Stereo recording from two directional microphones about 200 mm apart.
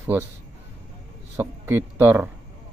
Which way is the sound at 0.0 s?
10° right (ahead or behind).